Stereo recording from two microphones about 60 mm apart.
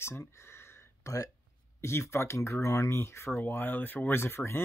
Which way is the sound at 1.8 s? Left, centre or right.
Left.